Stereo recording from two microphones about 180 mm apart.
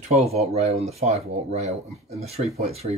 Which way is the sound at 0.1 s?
35° right (ahead or behind).